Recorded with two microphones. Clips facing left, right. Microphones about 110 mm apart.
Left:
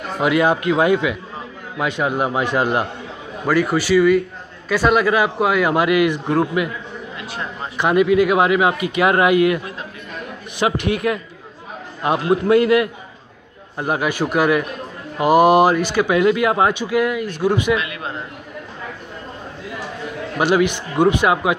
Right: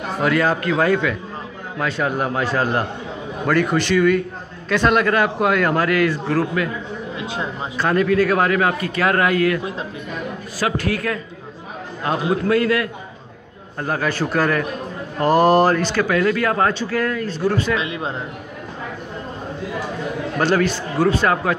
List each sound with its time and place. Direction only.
0.2 s a man's voice: 15° left (ahead or behind)
7.7 s a man's voice: 15° left (ahead or behind)
10.6 s a man's voice: 20° left (ahead or behind)
17.7 s speech: 25° right (ahead or behind)
20.3 s a man's voice: 10° left (ahead or behind)